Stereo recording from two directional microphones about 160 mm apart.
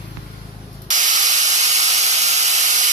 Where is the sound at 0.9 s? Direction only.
50° right (ahead or behind).